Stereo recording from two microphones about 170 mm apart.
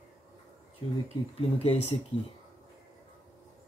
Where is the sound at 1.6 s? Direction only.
35° left (ahead or behind).